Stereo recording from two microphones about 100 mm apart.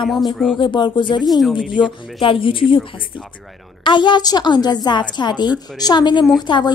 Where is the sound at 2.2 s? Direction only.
60° left (ahead or behind).